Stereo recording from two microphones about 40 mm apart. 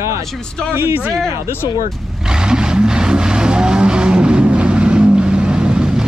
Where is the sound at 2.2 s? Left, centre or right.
Centre.